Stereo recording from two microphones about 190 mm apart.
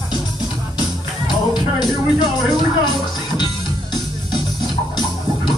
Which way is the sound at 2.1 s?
20° left (ahead or behind).